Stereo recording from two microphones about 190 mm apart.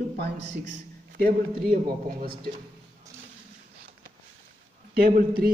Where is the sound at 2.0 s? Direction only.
55° right (ahead or behind).